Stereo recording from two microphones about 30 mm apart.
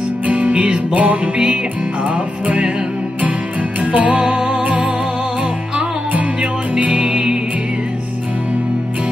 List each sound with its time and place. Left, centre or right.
0.5 s music: right
0.9 s music: right
3.8 s music: right
7.1 s music: right